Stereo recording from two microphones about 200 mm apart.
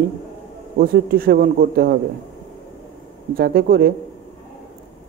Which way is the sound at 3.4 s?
50° right (ahead or behind).